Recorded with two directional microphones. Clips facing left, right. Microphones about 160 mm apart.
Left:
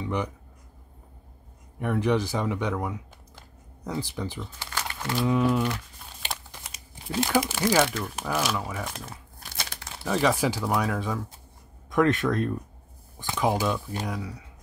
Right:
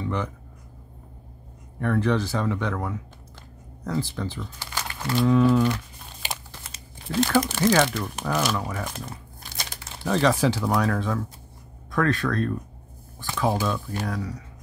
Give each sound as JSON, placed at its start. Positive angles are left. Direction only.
{"t": 0.0, "sound": "a sound", "side_deg": 15}
{"t": 1.8, "sound": "speech", "side_deg": 15}
{"t": 6.6, "sound": "crumpling", "side_deg": 10}
{"t": 7.5, "sound": "speech", "side_deg": 5}
{"t": 11.9, "sound": "speech", "side_deg": 20}